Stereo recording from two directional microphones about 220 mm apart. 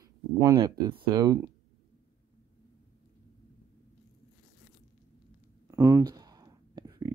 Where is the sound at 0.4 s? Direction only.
20° right (ahead or behind).